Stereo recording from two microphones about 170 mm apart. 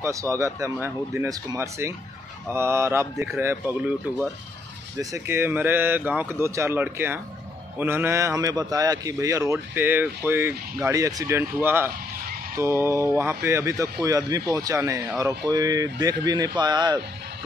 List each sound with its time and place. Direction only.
0.0 s a man's voice: 20° right (ahead or behind)